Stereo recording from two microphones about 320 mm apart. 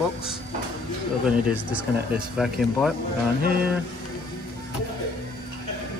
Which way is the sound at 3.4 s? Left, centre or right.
Right.